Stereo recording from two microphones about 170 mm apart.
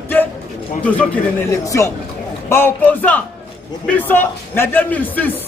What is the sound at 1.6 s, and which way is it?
Speech, 20° left (ahead or behind).